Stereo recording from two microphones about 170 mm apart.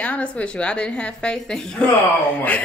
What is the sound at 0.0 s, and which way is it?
A woman's voice, 5° left (ahead or behind).